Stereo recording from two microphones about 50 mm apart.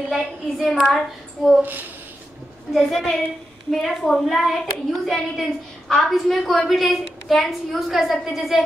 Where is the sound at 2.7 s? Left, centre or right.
Centre.